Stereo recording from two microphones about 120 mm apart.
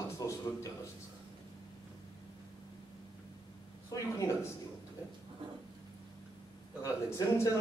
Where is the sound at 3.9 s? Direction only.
25° left (ahead or behind).